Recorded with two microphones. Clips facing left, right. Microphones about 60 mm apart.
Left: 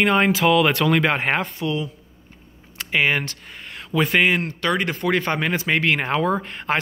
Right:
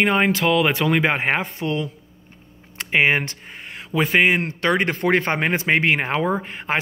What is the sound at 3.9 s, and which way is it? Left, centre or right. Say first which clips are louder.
Speech: right 1 dB; centre.